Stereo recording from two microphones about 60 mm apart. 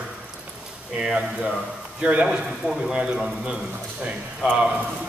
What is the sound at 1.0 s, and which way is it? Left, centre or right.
Speech, centre.